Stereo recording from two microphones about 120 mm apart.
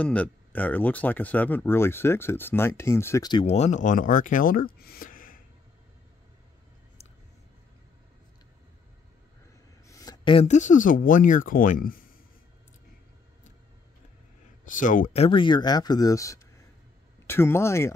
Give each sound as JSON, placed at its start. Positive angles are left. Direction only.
{"t": 0.0, "sound": "speech", "side_deg": 10}
{"t": 3.4, "sound": "speech", "side_deg": 65}
{"t": 9.8, "sound": "a sound", "side_deg": 30}
{"t": 10.4, "sound": "speech", "side_deg": 85}
{"t": 14.6, "sound": "speech", "side_deg": 90}
{"t": 15.2, "sound": "speech", "side_deg": 45}